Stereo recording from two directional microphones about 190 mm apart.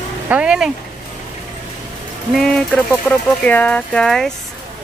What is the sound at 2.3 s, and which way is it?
Speech, centre (ahead or behind).